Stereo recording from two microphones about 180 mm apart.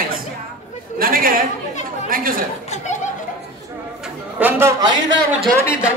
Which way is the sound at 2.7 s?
40° left (ahead or behind).